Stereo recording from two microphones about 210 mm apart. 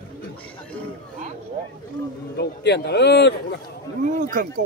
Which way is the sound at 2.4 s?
55° left (ahead or behind).